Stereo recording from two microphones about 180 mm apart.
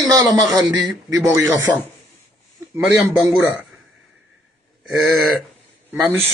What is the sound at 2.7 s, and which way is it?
Speech, 5° right (ahead or behind).